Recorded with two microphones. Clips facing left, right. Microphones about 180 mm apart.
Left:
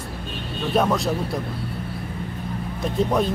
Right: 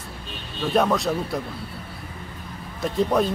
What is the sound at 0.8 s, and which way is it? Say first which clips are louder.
Speech: even; centre (ahead or behind).